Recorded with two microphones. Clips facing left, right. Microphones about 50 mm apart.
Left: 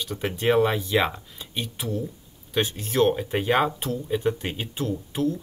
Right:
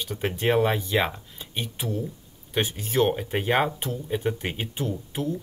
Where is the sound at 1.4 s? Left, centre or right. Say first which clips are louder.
Even; centre.